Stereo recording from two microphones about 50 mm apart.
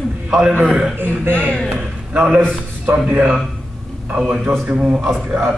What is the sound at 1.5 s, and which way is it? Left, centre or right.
Speech, centre.